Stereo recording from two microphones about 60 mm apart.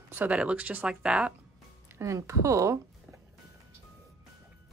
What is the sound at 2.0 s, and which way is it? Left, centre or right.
Speech, right.